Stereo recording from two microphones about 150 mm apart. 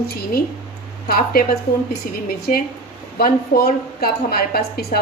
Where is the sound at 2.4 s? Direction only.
85° left.